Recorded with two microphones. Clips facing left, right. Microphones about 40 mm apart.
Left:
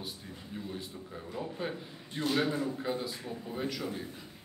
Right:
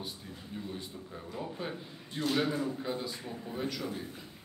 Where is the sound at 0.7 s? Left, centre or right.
Centre.